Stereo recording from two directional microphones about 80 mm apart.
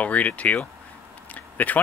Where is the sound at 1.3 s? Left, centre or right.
Left.